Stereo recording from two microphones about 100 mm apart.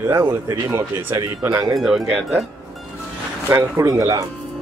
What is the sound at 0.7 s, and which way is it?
Speech, 30° right (ahead or behind).